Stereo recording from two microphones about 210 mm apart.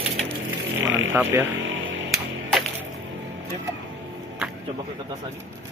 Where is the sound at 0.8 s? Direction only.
65° right (ahead or behind).